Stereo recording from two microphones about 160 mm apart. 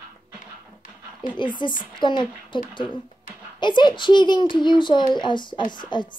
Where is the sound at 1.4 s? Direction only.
30° left (ahead or behind).